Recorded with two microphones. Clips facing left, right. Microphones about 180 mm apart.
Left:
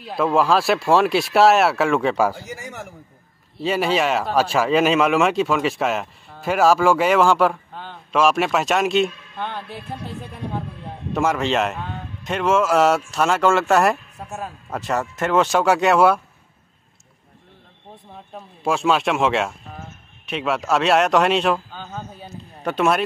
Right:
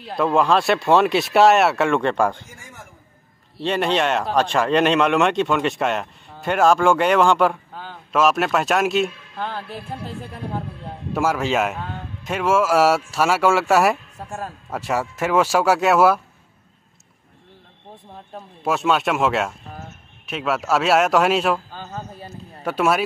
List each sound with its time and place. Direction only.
0.0 s speech: centre (ahead or behind)
2.4 s a man's voice: 75° left (ahead or behind)
3.5 s speech: 5° left (ahead or behind)
11.1 s speech: 5° right (ahead or behind)
14.8 s speech: 10° right (ahead or behind)
18.3 s speech: centre (ahead or behind)